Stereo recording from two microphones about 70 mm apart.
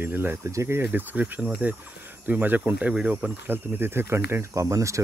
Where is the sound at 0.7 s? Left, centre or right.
Right.